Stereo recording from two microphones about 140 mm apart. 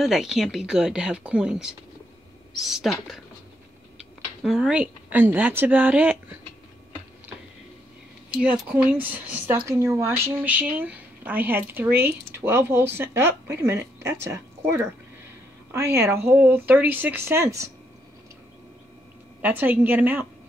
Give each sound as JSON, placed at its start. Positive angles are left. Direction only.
{"t": 0.0, "sound": "speech", "side_deg": 0}
{"t": 4.4, "sound": "speech", "side_deg": -5}
{"t": 8.4, "sound": "speech", "side_deg": -10}
{"t": 19.4, "sound": "speech", "side_deg": -10}